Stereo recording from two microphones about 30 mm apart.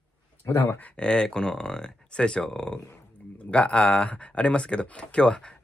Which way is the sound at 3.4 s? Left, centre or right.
Left.